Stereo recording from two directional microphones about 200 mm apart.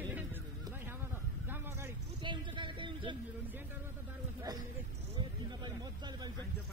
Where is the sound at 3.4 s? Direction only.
10° right (ahead or behind).